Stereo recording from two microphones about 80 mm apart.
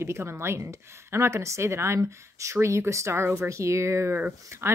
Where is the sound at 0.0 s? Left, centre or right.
Right.